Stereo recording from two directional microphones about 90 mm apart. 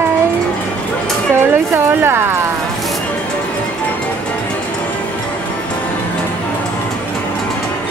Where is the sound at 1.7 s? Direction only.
25° right (ahead or behind).